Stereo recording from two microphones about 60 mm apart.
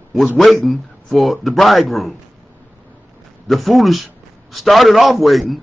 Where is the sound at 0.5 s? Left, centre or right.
Centre.